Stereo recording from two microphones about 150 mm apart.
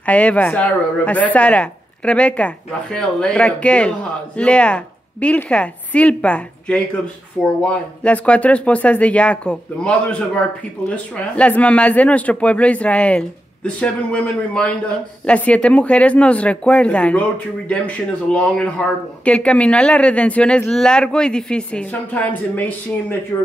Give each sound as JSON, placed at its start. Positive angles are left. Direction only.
{"t": 0.0, "sound": "speech", "side_deg": 10}